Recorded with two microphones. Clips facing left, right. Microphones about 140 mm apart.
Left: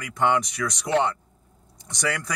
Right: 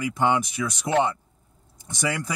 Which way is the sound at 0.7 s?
5° right (ahead or behind).